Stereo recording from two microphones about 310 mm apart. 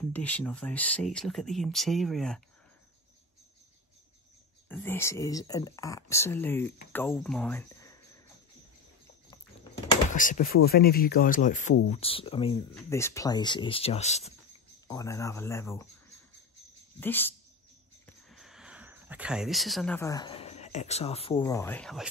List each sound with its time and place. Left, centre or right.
0.0 s speech: centre
4.6 s speech: centre
10.1 s speech: left
14.9 s speech: centre
17.0 s speech: centre